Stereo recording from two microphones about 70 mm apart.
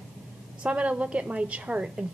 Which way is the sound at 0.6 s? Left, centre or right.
Centre.